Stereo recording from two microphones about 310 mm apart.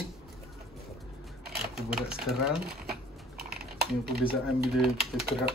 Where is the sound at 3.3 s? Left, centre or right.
Right.